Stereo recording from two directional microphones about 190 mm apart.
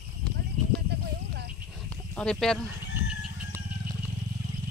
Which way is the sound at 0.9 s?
60° right (ahead or behind).